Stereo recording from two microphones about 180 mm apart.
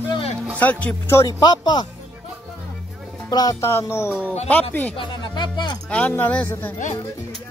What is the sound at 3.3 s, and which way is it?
Speech, 20° left (ahead or behind).